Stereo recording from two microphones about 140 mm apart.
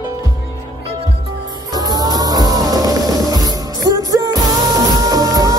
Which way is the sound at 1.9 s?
25° right (ahead or behind).